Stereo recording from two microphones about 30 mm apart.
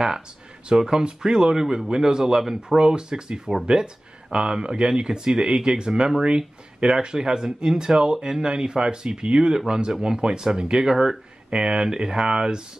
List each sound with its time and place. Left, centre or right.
0.7 s speech: centre